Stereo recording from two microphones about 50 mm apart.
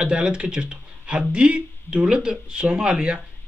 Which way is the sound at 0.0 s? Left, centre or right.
Centre.